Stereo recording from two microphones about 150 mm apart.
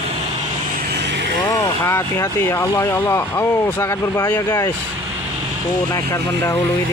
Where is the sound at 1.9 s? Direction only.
20° left (ahead or behind).